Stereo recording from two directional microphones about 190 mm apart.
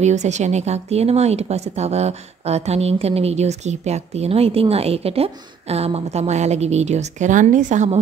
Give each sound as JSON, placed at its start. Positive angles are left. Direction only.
{"t": 0.0, "sound": "speech", "side_deg": -35}